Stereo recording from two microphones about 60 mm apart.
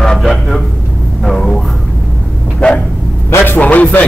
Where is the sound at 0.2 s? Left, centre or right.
Centre.